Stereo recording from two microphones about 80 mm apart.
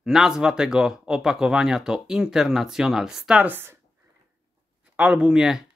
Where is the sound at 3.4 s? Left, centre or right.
Right.